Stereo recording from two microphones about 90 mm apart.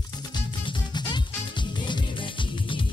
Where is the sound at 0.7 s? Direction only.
55° left (ahead or behind).